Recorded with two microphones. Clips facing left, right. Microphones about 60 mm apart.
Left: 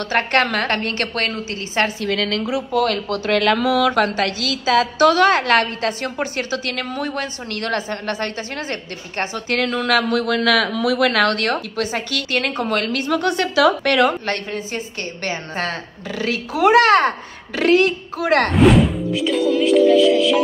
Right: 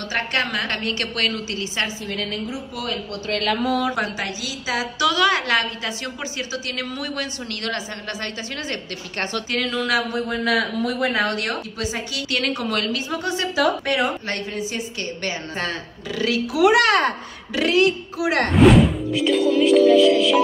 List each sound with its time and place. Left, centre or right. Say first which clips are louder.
0.1 s a woman's voice: left 5 dB; left
2.0 s a woman's voice: left 6 dB; left
2.7 s speech: left 12 dB; left
3.1 s a woman's voice: left 6 dB; left
10.1 s a woman's voice: left 4 dB; left
17.6 s a woman's voice: left 3 dB; left
18.5 s speech: right 4 dB; centre